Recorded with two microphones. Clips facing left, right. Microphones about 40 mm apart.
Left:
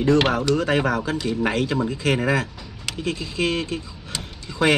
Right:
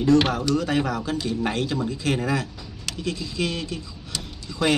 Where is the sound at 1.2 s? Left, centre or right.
Left.